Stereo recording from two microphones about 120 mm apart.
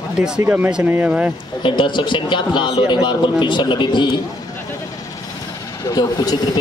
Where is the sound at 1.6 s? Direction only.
40° left (ahead or behind).